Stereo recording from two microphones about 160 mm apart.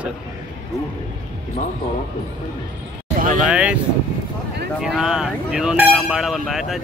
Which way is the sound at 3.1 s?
60° right (ahead or behind).